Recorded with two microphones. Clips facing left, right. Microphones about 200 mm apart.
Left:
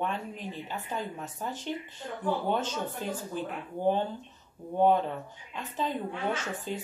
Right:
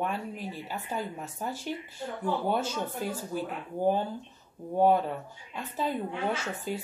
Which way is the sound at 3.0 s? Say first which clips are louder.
Right 1 dB; 10° right (ahead or behind).